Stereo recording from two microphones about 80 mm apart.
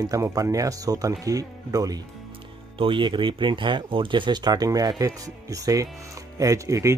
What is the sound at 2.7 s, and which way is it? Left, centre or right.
Speech, right.